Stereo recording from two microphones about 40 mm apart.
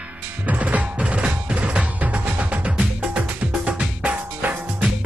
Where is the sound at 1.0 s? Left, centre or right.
Right.